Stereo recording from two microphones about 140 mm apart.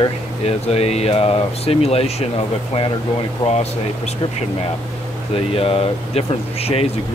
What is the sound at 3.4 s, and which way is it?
Speech, 35° left (ahead or behind).